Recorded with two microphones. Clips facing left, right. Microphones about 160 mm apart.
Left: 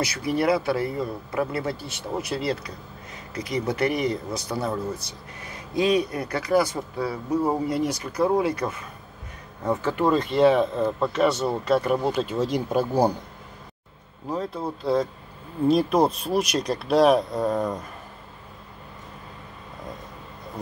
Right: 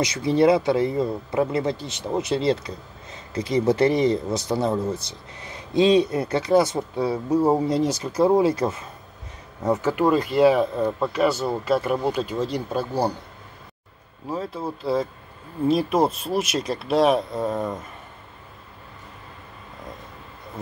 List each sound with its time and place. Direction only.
0.0 s speech: 25° right (ahead or behind); by 12.4 s centre (ahead or behind)
12.4 s speech: 10° left (ahead or behind)
14.2 s speech: 5° right (ahead or behind)